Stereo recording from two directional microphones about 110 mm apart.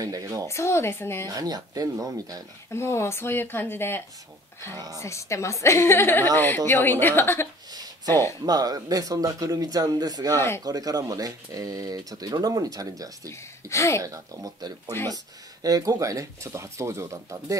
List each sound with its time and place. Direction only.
0.0 s speech: 35° right (ahead or behind)
0.5 s a woman's voice: 25° left (ahead or behind)
1.3 s speech: 35° right (ahead or behind)
2.7 s a woman's voice: 25° left (ahead or behind)
4.7 s speech: 35° right (ahead or behind)
5.0 s a woman's voice: 25° left (ahead or behind)
7.7 s a sound: 35° right (ahead or behind)
8.1 s a woman's voice: 25° left (ahead or behind)
8.5 s speech: 35° right (ahead or behind)
13.3 s a woman's voice: 25° left (ahead or behind)
14.0 s speech: 30° right (ahead or behind)
14.9 s a woman's voice: 20° left (ahead or behind)
15.6 s speech: 35° right (ahead or behind)